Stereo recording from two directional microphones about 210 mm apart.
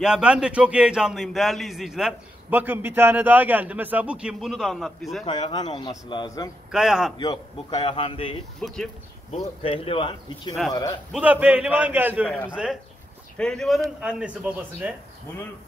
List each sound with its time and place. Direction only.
0.0 s a man's voice: 5° right (ahead or behind)
5.2 s speech: 25° left (ahead or behind)
6.7 s a man's voice: 5° right (ahead or behind)
7.2 s speech: 20° left (ahead or behind)
8.5 s a man's voice: centre (ahead or behind)
9.3 s speech: 30° left (ahead or behind)
11.1 s a man's voice: 5° right (ahead or behind)